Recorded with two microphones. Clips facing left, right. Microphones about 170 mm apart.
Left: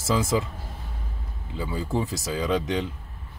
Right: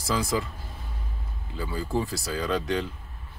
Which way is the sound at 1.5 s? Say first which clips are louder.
Left 1 dB; 20° left (ahead or behind).